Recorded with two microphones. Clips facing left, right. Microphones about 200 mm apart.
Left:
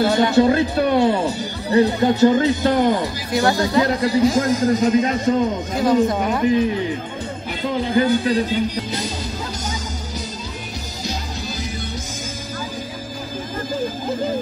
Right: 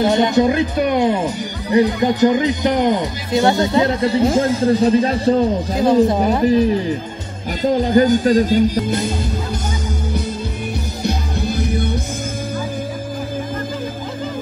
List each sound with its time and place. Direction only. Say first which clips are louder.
0.0 s speech: right 1 dB; 20° right (ahead or behind); by 6.6 s 35° right (ahead or behind)
7.6 s speech: right 5 dB; 40° right (ahead or behind)
11.1 s music: right 7 dB; 60° right (ahead or behind)